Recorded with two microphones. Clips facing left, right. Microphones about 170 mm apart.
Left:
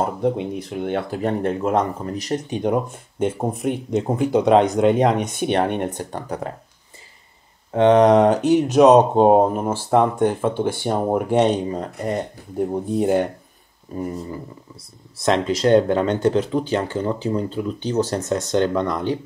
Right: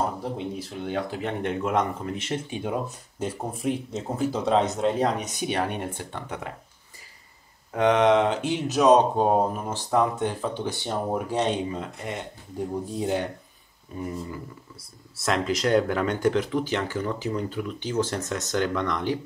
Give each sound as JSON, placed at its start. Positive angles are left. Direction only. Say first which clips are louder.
{"t": 0.7, "sound": "speech", "louder": "left 5 dB", "side_deg": 60}
{"t": 1.2, "sound": "speech", "louder": "left 6 dB", "side_deg": 40}
{"t": 4.2, "sound": "speech", "louder": "left 7 dB", "side_deg": 75}
{"t": 5.3, "sound": "speech", "louder": "left 7 dB", "side_deg": 55}
{"t": 7.7, "sound": "speech", "louder": "left 6 dB", "side_deg": 30}
{"t": 9.1, "sound": "speech", "louder": "left 8 dB", "side_deg": 60}
{"t": 11.0, "sound": "speech", "louder": "left 7 dB", "side_deg": 65}
{"t": 11.4, "sound": "speech", "louder": "left 6 dB", "side_deg": 40}
{"t": 12.5, "sound": "speech", "louder": "left 8 dB", "side_deg": 55}
{"t": 13.9, "sound": "speech", "louder": "left 5 dB", "side_deg": 35}